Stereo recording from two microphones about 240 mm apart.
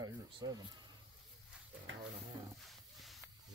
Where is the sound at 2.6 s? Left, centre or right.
Centre.